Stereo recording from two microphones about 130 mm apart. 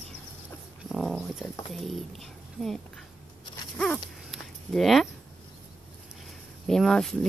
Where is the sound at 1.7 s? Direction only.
Centre (ahead or behind).